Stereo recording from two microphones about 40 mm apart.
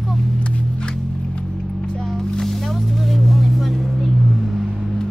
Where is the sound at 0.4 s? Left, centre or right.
Left.